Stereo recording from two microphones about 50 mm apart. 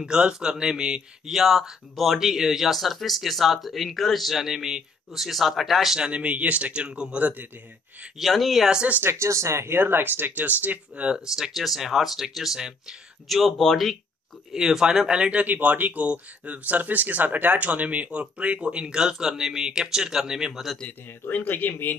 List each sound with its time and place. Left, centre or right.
0.0 s speech: centre
5.9 s speech: right
8.2 s speech: centre
9.2 s speech: right
11.3 s speech: centre
13.3 s speech: centre
14.5 s speech: centre
21.3 s speech: left